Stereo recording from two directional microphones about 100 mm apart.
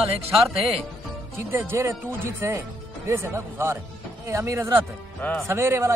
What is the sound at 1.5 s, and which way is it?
Speech, 25° right (ahead or behind).